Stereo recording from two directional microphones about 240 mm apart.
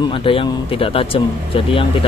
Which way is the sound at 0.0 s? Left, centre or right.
Left.